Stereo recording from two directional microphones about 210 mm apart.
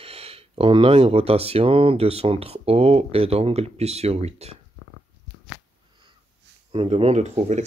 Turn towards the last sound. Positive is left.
turn(degrees=-30)  # may be behind; listen again after turning